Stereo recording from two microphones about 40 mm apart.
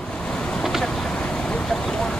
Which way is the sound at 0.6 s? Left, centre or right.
Centre.